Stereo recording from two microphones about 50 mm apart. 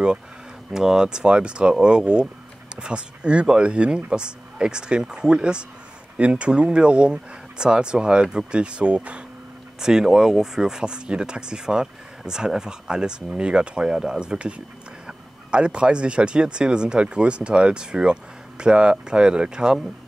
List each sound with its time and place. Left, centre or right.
0.7 s speech: centre
9.8 s speech: centre